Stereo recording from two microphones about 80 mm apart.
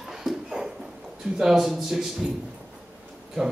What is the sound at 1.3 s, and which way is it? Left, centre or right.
Speech, centre.